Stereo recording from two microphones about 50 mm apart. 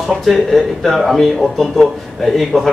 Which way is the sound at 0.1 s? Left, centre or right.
Centre.